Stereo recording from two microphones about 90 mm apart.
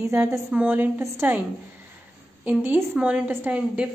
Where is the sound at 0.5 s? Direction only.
20° right (ahead or behind).